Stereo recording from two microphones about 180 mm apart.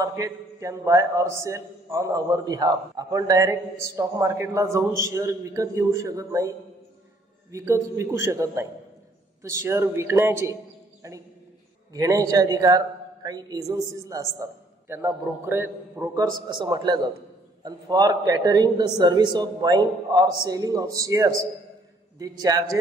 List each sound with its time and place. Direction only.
0.0 s a man's voice: 20° right (ahead or behind)
7.5 s a man's voice: 15° right (ahead or behind)
16.4 s a man's voice: 25° right (ahead or behind)